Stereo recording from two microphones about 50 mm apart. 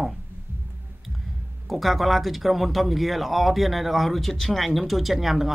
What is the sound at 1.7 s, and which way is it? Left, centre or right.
Speech, centre.